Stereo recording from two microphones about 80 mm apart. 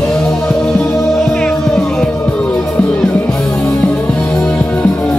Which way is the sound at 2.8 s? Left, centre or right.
Centre.